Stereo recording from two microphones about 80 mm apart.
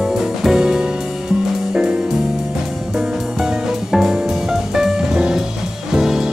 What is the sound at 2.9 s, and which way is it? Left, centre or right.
Music, centre.